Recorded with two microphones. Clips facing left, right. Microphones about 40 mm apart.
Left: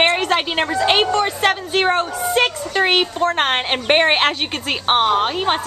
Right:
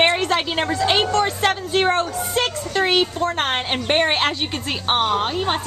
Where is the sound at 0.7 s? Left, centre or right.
Left.